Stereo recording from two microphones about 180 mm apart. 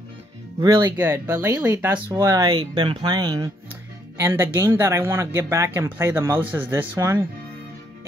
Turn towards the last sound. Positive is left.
turn(degrees=-15)  # may be behind; listen again after turning